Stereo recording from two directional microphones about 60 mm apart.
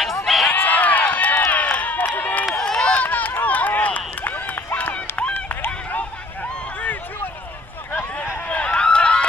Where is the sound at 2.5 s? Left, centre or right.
Centre.